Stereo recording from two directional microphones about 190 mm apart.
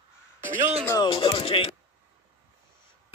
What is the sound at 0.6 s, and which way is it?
Speech, 35° right (ahead or behind).